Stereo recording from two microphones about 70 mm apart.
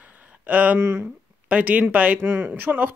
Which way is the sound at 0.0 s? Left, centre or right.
Right.